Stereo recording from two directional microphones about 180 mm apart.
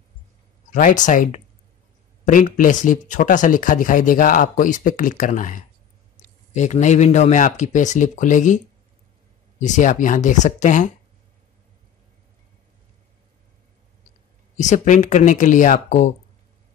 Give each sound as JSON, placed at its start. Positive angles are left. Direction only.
{"t": 0.7, "sound": "speech", "side_deg": 45}
{"t": 9.6, "sound": "speech", "side_deg": 45}
{"t": 14.6, "sound": "speech", "side_deg": 40}